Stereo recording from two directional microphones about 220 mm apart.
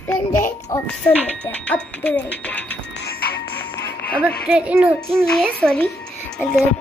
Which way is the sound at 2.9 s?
45° left (ahead or behind).